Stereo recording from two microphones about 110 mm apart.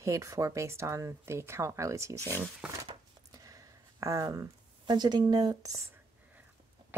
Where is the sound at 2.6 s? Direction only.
10° right (ahead or behind).